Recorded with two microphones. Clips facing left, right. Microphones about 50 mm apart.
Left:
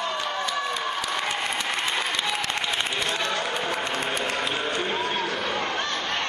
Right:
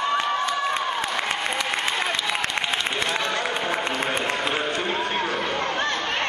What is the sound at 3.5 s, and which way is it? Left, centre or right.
Music, centre.